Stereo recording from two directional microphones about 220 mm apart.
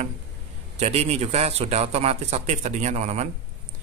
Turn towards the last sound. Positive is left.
turn(degrees=-30)  # may be behind; listen again after turning